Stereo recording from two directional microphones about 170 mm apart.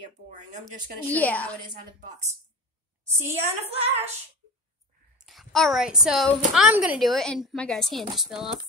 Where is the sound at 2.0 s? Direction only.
40° right (ahead or behind).